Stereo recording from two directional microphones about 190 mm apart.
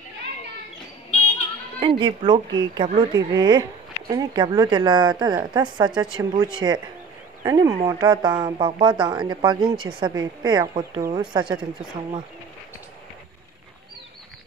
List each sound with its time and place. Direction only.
1.8 s speech: 25° right (ahead or behind)